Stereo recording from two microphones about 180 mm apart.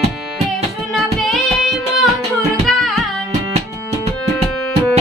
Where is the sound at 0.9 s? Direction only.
Centre (ahead or behind).